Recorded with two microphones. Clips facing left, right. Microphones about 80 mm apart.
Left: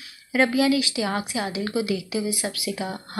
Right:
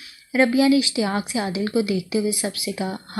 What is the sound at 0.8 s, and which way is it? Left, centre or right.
Speech, left.